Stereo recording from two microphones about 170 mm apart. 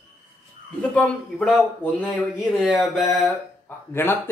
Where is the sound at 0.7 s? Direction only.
5° left (ahead or behind).